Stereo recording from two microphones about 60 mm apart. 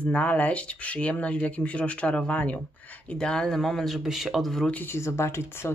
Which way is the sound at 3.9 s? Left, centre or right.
Centre.